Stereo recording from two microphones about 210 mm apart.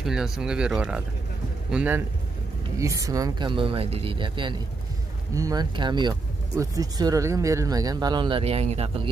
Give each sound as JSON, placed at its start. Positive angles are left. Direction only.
{"t": 0.0, "sound": "speech", "side_deg": 0}